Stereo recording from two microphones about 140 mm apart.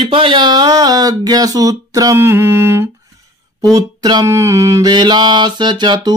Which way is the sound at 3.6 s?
30° right (ahead or behind).